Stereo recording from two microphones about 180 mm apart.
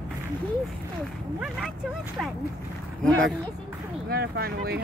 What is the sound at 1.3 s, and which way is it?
Speech, 5° right (ahead or behind).